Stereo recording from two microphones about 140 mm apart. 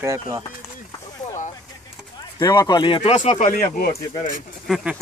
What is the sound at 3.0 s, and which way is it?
Speech, 55° left (ahead or behind).